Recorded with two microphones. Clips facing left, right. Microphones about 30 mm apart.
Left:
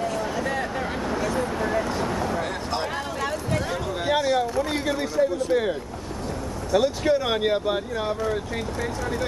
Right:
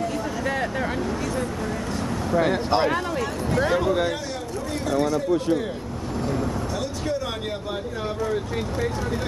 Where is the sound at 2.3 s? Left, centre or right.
Centre.